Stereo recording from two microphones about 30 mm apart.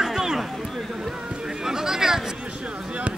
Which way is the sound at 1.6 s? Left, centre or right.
Centre.